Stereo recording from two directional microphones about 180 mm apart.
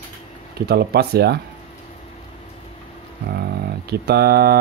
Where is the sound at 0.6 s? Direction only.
60° right (ahead or behind).